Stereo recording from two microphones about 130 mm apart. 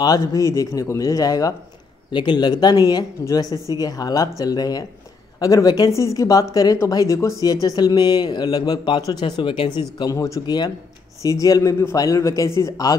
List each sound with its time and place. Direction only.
0.0 s speech: 25° left (ahead or behind)
10.1 s speech: 25° left (ahead or behind)